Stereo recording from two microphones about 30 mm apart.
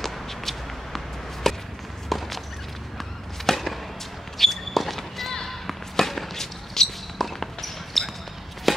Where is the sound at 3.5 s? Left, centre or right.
Centre.